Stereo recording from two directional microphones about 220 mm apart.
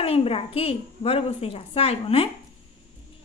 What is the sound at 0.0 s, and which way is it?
Speech, 25° left (ahead or behind).